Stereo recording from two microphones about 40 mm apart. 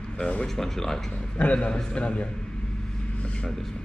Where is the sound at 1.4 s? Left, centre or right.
Left.